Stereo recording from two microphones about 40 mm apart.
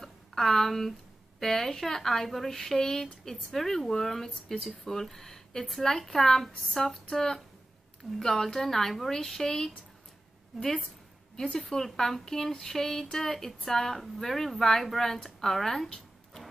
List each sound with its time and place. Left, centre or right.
0.0 s a sound: centre
1.4 s a woman's voice: centre; by 11.7 s left
11.7 s speech: centre